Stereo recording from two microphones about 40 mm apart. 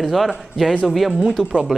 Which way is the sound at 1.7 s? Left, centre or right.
Right.